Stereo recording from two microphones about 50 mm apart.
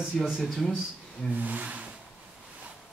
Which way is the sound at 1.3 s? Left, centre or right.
Right.